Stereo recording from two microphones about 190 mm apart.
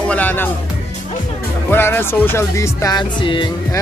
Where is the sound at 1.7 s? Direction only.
10° left (ahead or behind).